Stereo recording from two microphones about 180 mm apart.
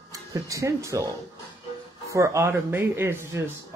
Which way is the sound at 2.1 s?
15° right (ahead or behind).